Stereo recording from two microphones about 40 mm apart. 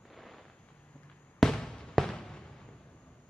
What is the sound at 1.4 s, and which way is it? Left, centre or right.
Fireworks, centre.